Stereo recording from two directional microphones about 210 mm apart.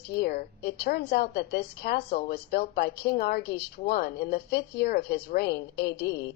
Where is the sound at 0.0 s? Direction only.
50° left (ahead or behind).